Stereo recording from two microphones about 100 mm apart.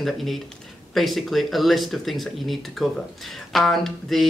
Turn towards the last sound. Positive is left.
turn(degrees=0)  # may be behind; listen again after turning